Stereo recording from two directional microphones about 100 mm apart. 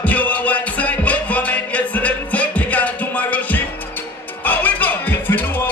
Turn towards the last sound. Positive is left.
turn(degrees=20)  # may be behind; listen again after turning